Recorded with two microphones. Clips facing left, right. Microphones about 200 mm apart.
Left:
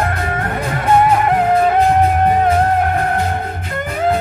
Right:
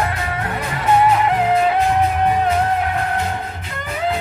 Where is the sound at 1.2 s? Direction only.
50° left (ahead or behind).